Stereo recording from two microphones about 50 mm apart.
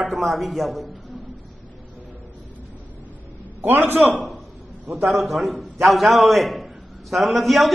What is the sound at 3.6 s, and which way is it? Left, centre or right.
Speech, right.